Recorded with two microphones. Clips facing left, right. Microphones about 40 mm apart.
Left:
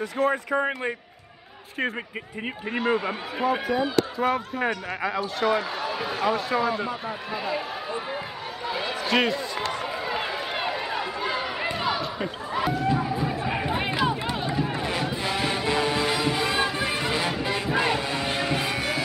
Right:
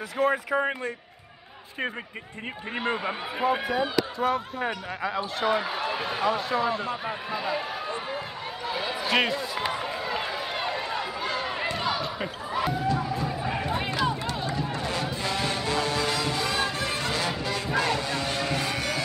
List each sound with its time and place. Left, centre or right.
0.2 s a man's voice: centre
2.7 s a man's voice: centre
4.2 s a man's voice: centre
5.0 s a man's voice: centre
7.3 s run: centre
8.6 s a sound: centre
9.6 s run: centre
10.0 s run: centre
12.8 s crowd: centre
13.5 s run: centre
17.4 s music: centre
17.7 s a sound: centre